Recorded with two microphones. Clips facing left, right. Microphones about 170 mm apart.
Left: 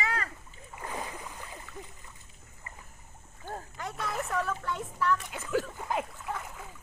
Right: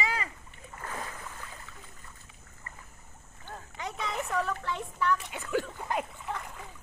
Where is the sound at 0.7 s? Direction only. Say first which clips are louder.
Left 2 dB; 15° left (ahead or behind).